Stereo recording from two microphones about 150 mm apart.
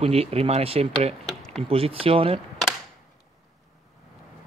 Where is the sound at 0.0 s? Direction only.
40° right (ahead or behind).